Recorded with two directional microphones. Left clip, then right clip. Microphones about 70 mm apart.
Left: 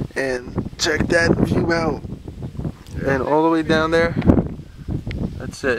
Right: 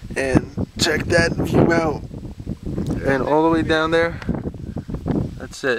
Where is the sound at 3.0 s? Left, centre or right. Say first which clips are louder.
Even; right.